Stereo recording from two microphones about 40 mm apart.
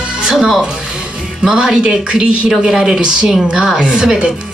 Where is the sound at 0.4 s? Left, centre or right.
Right.